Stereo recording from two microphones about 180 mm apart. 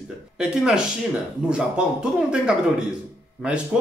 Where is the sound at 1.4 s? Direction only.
5° right (ahead or behind).